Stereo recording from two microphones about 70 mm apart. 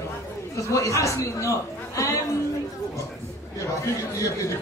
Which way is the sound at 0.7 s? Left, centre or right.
Left.